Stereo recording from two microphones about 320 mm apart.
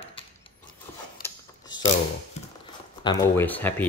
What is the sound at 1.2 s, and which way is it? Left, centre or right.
Mechanisms, centre.